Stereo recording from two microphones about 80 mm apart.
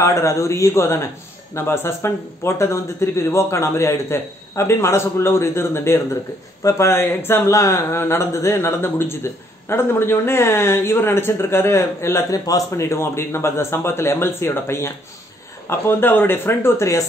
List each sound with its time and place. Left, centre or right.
0.0 s speech: left
12.3 s a man's voice: left